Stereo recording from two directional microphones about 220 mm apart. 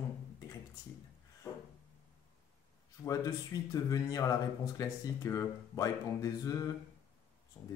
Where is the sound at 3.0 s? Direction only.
15° left (ahead or behind).